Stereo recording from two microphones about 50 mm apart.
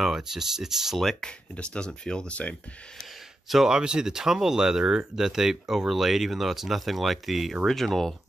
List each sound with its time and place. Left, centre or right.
0.0 s speech: centre
1.5 s speech: left
3.4 s speech: centre